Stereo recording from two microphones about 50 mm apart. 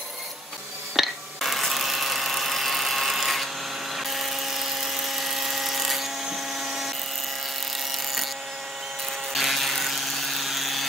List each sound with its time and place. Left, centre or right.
0.9 s dental drill: centre
3.9 s helicopter: centre
7.9 s a sound: centre
9.3 s electric toothbrush: centre